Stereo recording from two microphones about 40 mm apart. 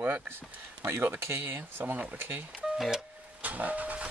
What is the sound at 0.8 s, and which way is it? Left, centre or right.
Speech, right.